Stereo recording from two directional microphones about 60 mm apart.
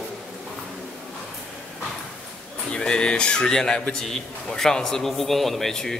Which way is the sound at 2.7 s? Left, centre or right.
Centre.